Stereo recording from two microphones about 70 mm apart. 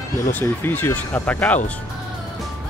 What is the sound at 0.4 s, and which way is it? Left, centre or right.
Speech, left.